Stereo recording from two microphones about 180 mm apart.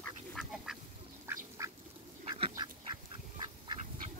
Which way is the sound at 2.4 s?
25° right (ahead or behind).